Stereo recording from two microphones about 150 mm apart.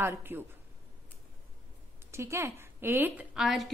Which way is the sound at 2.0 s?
20° right (ahead or behind).